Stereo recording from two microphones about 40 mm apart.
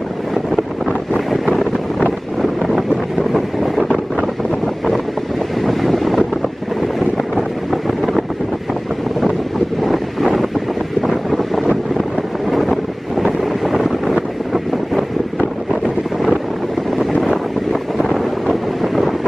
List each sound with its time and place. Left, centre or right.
1.5 s wind noise: centre
5.6 s wind noise: centre
9.8 s wind noise: centre
13.2 s vehicle: centre
18.1 s wind noise: centre